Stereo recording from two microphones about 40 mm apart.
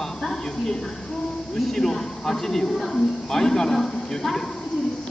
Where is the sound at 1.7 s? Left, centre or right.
Centre.